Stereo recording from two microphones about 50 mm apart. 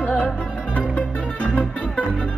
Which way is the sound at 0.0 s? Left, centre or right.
Left.